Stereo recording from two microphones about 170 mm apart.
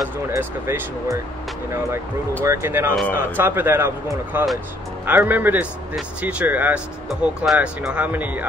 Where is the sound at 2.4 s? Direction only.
15° right (ahead or behind).